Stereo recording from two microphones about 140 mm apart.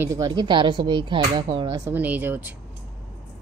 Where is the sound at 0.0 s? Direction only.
25° right (ahead or behind).